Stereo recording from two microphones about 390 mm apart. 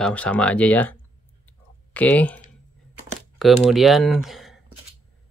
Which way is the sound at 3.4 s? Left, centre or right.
Centre.